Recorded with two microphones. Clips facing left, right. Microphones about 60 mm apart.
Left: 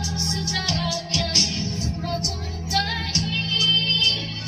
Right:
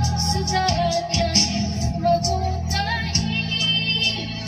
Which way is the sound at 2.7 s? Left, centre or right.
Right.